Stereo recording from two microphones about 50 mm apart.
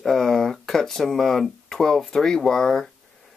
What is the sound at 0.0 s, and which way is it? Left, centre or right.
Speech, centre.